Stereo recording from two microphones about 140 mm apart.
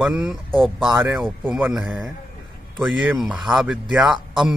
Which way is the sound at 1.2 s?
Centre (ahead or behind).